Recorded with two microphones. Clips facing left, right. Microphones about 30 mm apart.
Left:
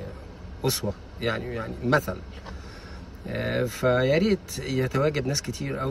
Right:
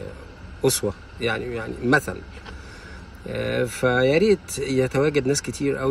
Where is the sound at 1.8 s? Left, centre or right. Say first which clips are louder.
Right 4 dB; right.